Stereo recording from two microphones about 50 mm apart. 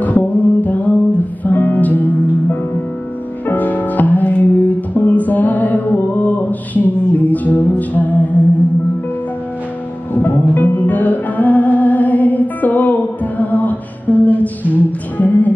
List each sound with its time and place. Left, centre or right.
0.0 s music: left
10.1 s music: left